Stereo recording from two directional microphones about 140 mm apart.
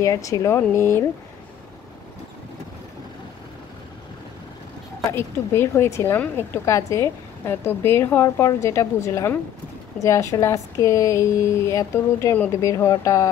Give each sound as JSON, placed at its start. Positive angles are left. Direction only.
{"t": 0.0, "sound": "a woman's voice", "side_deg": 25}
{"t": 5.1, "sound": "a woman's voice", "side_deg": 20}